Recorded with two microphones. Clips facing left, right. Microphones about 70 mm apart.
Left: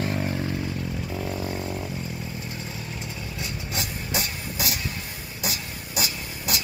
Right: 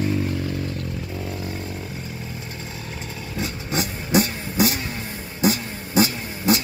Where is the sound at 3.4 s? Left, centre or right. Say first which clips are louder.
Right 8 dB; right.